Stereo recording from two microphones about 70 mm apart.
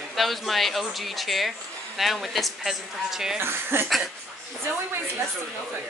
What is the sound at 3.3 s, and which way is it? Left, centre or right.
Speech, right.